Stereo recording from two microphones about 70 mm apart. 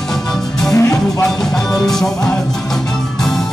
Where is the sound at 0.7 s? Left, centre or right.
Left.